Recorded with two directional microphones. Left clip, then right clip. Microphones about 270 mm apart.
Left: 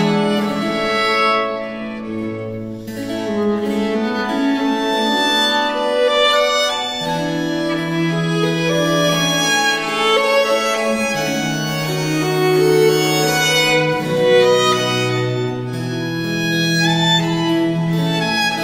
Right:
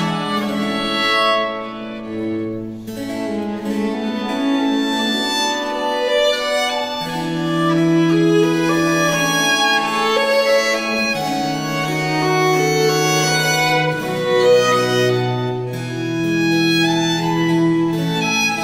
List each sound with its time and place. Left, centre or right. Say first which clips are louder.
10.1 s music: even; centre
12.8 s music: left 1 dB; centre